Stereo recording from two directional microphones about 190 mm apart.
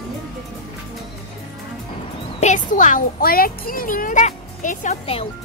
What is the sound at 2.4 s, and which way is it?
A child's voice, 40° left (ahead or behind).